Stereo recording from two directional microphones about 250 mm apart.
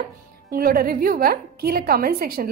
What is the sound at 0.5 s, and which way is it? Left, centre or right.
Speech, right.